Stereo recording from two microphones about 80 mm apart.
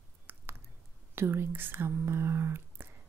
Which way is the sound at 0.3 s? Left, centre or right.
Right.